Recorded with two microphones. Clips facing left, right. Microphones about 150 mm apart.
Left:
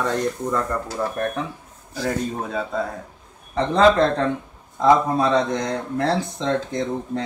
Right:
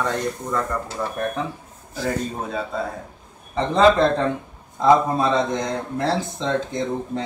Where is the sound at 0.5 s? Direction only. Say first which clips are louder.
Left 1 dB; centre (ahead or behind).